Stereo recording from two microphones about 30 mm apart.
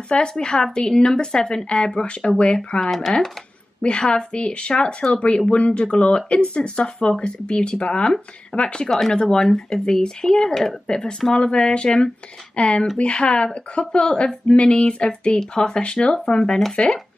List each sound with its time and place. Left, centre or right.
0.4 s a woman's voice: left
1.7 s a woman's voice: left
16.8 s speech: left